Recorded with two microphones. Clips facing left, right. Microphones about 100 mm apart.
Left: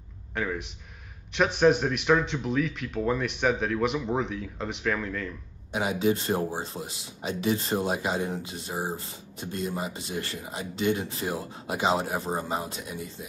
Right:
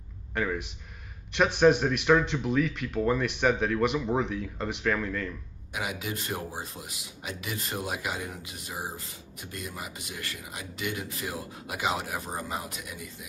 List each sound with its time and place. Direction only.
0.3 s speech: centre (ahead or behind)
5.7 s speech: 30° left (ahead or behind)